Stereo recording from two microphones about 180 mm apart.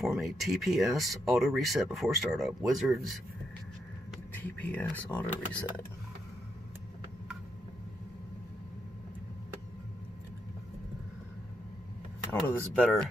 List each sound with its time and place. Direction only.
0.0 s speech: centre (ahead or behind)
4.6 s speech: 10° left (ahead or behind)
12.3 s speech: 5° left (ahead or behind)